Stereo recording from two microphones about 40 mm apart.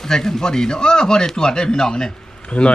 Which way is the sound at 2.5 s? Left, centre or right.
Left.